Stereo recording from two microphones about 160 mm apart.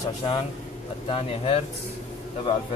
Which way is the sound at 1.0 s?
35° left (ahead or behind).